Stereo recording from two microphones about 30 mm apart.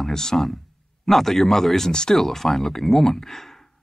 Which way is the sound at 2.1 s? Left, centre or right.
Centre.